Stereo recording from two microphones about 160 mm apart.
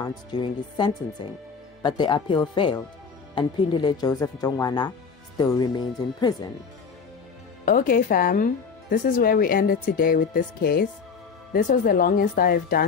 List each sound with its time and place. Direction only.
0.0 s speech: 30° left (ahead or behind)
7.6 s speech: 55° left (ahead or behind)